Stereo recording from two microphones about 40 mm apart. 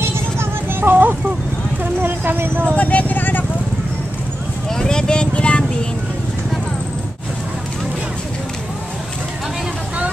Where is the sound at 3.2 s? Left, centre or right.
Left.